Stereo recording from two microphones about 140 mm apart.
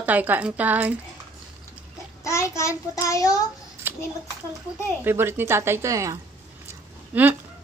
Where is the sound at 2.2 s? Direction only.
20° left (ahead or behind).